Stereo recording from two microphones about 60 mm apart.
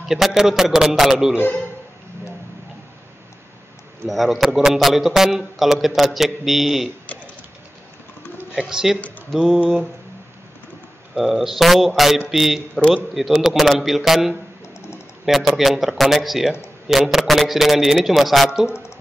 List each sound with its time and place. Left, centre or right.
0.1 s a man's voice: centre
4.1 s a man's voice: centre
8.5 s a man's voice: centre
9.3 s a man's voice: centre
11.1 s a man's voice: centre
18.7 s a sound: left